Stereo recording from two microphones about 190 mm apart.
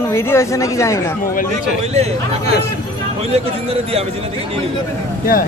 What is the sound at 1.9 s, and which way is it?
Speech, 35° right (ahead or behind).